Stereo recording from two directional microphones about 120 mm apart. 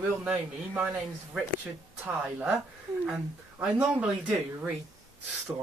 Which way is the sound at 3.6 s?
10° right (ahead or behind).